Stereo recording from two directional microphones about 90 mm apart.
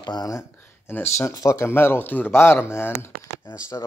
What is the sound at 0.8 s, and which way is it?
Speech, 25° left (ahead or behind).